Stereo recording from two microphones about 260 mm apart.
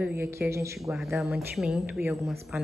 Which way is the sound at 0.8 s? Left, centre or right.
Centre.